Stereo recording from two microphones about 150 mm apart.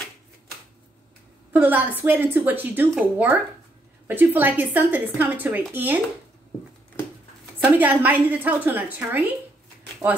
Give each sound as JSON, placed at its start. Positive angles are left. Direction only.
{"t": 1.5, "sound": "a woman's voice", "side_deg": -10}
{"t": 7.0, "sound": "a sound", "side_deg": 15}
{"t": 7.6, "sound": "a woman's voice", "side_deg": -10}
{"t": 10.0, "sound": "speech", "side_deg": -20}